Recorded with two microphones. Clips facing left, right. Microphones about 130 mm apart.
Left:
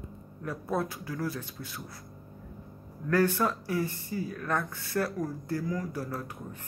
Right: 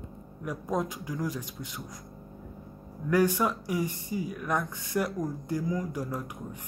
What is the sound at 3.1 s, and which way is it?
Speech, 15° right (ahead or behind).